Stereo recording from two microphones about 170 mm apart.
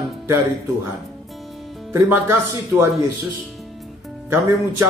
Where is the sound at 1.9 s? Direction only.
15° right (ahead or behind).